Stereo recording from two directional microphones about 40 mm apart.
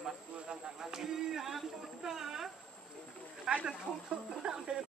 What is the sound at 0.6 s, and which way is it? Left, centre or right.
Speech, centre.